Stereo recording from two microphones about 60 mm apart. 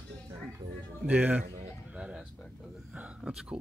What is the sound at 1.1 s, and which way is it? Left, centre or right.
Speech, right.